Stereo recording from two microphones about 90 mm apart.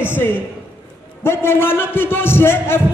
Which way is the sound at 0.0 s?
25° left (ahead or behind).